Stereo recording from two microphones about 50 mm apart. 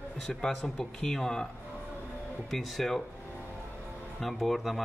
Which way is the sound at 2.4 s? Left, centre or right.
Centre.